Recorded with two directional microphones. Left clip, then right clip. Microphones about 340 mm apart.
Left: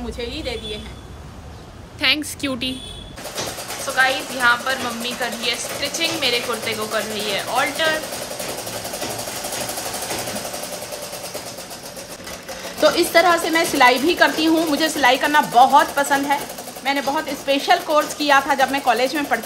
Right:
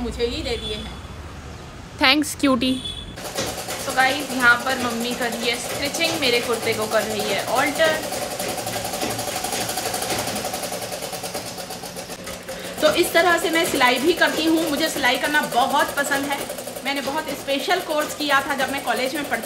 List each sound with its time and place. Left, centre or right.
0.2 s a woman's voice: centre
2.0 s a woman's voice: centre
3.9 s a woman's voice: centre
12.8 s a woman's voice: left